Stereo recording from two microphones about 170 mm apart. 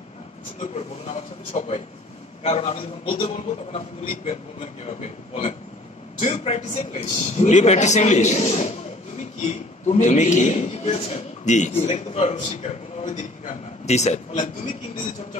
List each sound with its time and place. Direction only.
0.6 s a man's voice: 40° left (ahead or behind)